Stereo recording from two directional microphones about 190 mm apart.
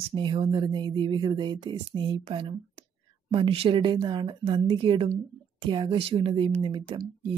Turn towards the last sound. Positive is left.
turn(degrees=-25)  # may be behind; listen again after turning